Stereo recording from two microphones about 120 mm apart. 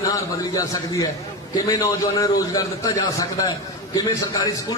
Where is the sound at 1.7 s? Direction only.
30° left (ahead or behind).